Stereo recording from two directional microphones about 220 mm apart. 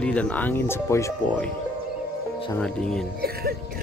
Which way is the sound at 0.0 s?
5° left (ahead or behind).